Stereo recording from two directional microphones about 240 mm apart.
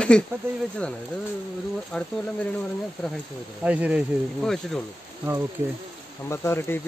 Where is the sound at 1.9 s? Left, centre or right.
Centre.